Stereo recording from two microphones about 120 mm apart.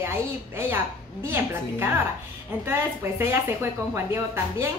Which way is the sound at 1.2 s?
20° right (ahead or behind).